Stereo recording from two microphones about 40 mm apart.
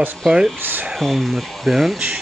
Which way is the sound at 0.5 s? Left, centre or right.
Right.